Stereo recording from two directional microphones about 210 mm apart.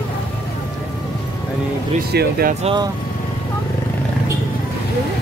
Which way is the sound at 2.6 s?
25° right (ahead or behind).